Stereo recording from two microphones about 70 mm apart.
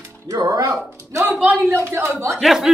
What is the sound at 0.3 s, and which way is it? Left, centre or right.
Speech, right.